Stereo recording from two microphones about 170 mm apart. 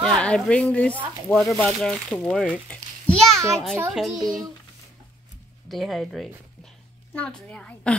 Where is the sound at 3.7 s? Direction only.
10° right (ahead or behind).